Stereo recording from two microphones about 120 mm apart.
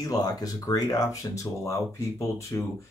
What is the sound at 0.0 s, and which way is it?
Speech, 30° left (ahead or behind).